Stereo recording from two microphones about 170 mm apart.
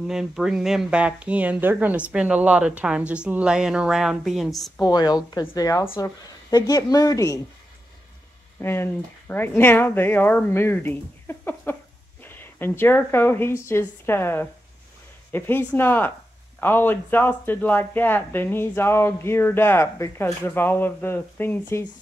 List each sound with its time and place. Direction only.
0.1 s speech: 5° right (ahead or behind)
4.7 s a woman's voice: 20° left (ahead or behind)
8.5 s a woman's voice: 15° left (ahead or behind)